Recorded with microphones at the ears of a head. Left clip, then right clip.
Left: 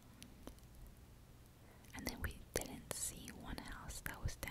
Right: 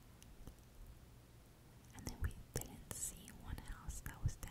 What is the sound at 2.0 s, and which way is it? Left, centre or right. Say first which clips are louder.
Whispering: left 6 dB; left.